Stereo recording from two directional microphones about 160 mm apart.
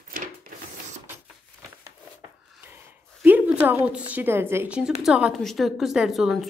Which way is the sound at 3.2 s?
10° right (ahead or behind).